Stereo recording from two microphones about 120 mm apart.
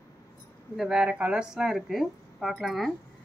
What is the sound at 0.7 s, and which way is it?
Speech, 5° right (ahead or behind).